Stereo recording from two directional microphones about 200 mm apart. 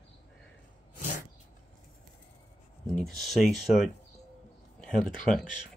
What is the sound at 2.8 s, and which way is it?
Speech, centre (ahead or behind).